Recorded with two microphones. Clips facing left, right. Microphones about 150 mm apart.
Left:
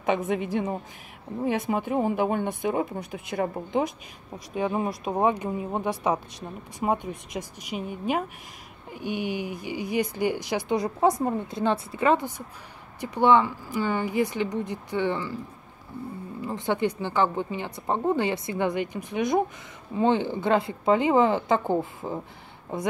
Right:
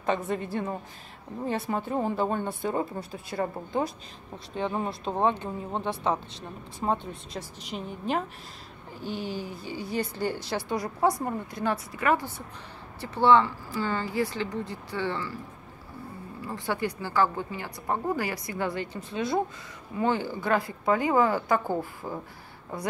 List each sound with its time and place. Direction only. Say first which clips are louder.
0.0 s speech: left 3 dB; 15° left (ahead or behind)
16.3 s speech: left 4 dB; 20° left (ahead or behind)